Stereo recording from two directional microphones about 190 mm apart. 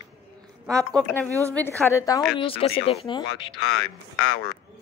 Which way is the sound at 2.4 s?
30° left (ahead or behind).